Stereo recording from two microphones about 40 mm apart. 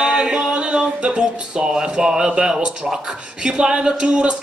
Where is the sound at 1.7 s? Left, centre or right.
Centre.